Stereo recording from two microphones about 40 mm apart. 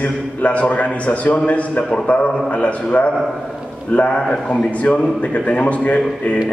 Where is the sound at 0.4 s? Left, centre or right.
Left.